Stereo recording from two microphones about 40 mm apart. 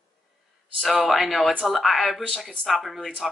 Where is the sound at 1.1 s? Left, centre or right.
Centre.